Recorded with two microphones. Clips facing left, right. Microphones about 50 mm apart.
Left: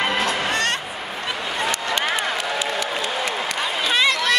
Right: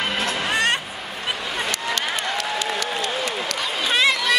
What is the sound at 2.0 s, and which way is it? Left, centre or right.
Run, centre.